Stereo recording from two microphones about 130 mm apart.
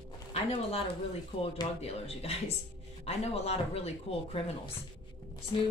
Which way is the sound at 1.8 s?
50° left (ahead or behind).